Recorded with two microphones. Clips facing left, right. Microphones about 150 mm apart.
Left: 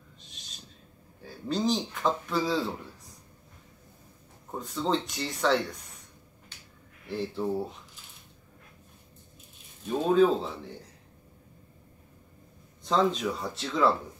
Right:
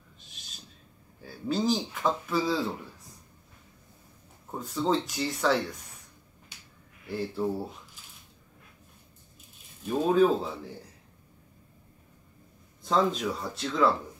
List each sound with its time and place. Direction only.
1.2 s speech: 5° right (ahead or behind)
4.6 s speech: centre (ahead or behind)
7.1 s speech: centre (ahead or behind)
9.8 s speech: 5° right (ahead or behind)
12.8 s speech: centre (ahead or behind)